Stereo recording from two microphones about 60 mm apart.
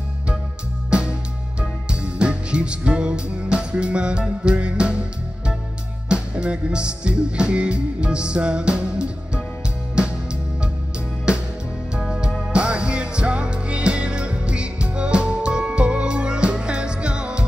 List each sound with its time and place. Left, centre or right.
1.6 s music: centre
6.0 s music: centre
12.1 s music: centre